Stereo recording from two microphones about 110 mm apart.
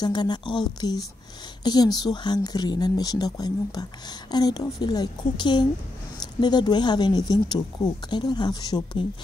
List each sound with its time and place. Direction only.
0.0 s speech: 40° left (ahead or behind)